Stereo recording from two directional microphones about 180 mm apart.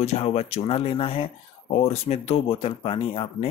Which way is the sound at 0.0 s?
35° left (ahead or behind).